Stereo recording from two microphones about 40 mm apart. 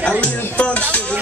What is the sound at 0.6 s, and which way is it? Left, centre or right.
Music, left.